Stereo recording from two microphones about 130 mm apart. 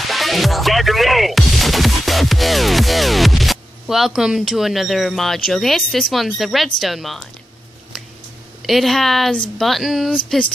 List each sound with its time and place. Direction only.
0.1 s music: centre (ahead or behind)
6.8 s a woman's voice: centre (ahead or behind)
8.6 s a woman's voice: centre (ahead or behind)